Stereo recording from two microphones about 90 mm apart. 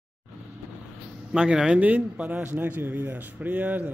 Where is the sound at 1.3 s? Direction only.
10° right (ahead or behind).